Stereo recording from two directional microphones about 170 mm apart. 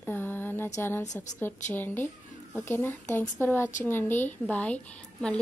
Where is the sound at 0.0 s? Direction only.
10° left (ahead or behind).